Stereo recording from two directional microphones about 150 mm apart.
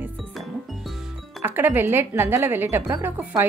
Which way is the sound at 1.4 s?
15° right (ahead or behind).